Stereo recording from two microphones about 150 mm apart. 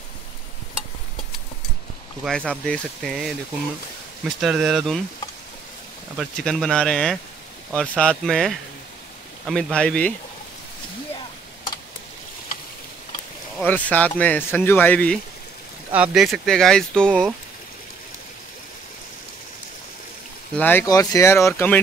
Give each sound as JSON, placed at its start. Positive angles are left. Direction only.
{"t": 2.2, "sound": "speech", "side_deg": 5}
{"t": 4.4, "sound": "speech", "side_deg": 0}
{"t": 6.1, "sound": "speech", "side_deg": 0}
{"t": 13.7, "sound": "speech", "side_deg": 10}
{"t": 15.9, "sound": "speech", "side_deg": -5}
{"t": 20.5, "sound": "speech", "side_deg": 15}